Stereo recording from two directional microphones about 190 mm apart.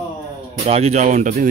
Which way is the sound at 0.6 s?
35° right (ahead or behind).